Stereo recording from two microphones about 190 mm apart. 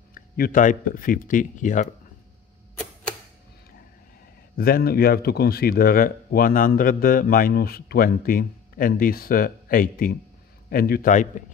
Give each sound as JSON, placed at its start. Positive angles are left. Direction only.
{"t": 0.1, "sound": "speech", "side_deg": 45}
{"t": 2.8, "sound": "camera", "side_deg": 5}
{"t": 4.6, "sound": "speech", "side_deg": 50}